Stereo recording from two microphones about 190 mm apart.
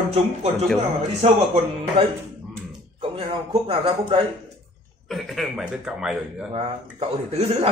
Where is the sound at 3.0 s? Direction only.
30° right (ahead or behind).